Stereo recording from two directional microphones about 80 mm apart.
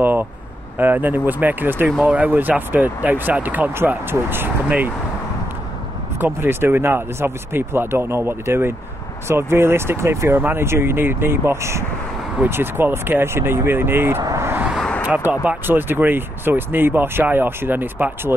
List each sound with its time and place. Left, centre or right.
0.0 s speech: right
6.1 s speech: right
14.2 s vehicle: right
15.0 s speech: right